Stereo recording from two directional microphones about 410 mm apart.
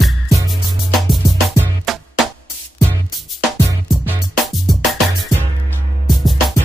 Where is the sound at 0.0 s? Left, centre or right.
Centre.